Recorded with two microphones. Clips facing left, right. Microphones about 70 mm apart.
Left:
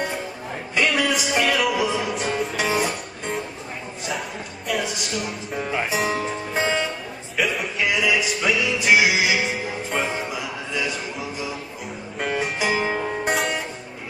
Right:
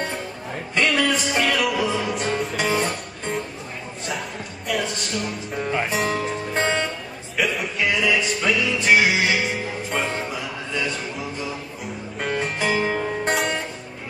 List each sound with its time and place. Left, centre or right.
0.7 s music: centre
4.6 s music: centre